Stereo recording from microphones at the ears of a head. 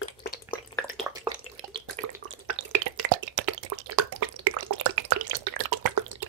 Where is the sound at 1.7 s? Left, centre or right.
Right.